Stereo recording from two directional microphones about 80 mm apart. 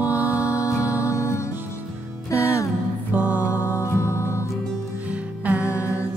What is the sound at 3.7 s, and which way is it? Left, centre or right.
Music, left.